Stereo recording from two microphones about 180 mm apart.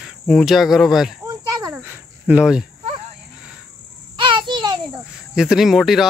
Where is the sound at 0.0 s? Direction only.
Centre (ahead or behind).